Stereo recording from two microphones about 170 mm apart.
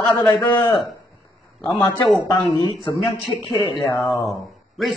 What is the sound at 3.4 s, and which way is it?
Speech, 30° left (ahead or behind).